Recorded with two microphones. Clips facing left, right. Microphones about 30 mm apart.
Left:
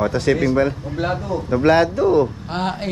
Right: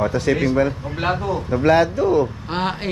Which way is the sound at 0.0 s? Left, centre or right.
Left.